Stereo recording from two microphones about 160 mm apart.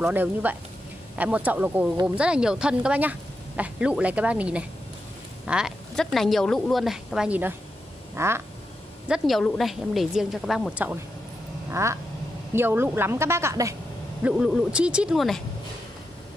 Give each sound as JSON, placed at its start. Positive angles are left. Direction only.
{"t": 0.1, "sound": "speech", "side_deg": -10}
{"t": 5.4, "sound": "a sound", "side_deg": -5}
{"t": 6.1, "sound": "a woman's voice", "side_deg": 0}
{"t": 9.0, "sound": "a woman's voice", "side_deg": -5}
{"t": 14.2, "sound": "a woman's voice", "side_deg": -5}